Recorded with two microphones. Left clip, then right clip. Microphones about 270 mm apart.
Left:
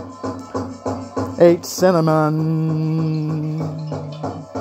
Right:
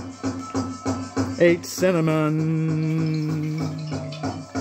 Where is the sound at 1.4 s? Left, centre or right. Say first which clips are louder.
Left 6 dB; centre.